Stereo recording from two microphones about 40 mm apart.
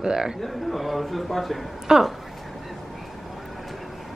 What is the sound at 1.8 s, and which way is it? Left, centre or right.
Speech, centre.